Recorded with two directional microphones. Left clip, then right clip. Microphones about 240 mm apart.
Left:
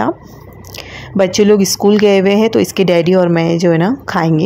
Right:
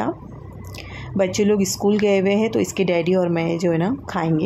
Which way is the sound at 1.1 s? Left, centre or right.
Left.